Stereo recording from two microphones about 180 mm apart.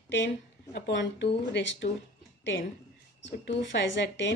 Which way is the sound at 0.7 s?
70° left (ahead or behind).